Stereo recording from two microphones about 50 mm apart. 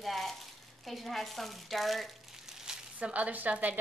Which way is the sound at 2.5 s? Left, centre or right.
Centre.